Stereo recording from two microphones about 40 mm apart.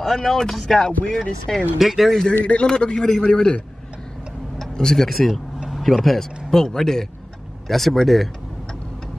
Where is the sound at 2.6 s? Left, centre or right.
Left.